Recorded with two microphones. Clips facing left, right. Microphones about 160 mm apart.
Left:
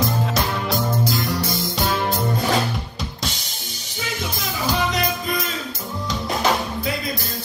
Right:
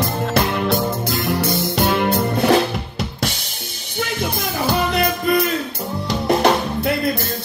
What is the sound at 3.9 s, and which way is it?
Music, 55° right (ahead or behind).